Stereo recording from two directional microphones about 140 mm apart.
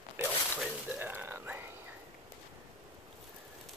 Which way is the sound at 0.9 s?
15° right (ahead or behind).